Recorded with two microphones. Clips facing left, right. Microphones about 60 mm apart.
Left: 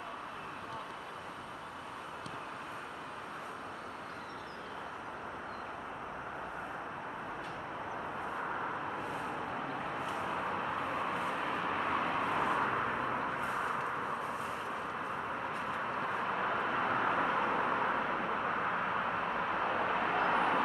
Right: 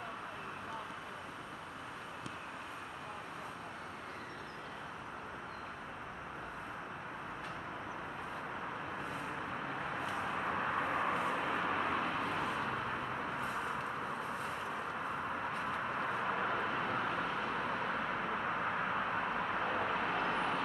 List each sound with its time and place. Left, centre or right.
10.3 s vehicle: centre
13.4 s a sound: centre
15.7 s vehicle: centre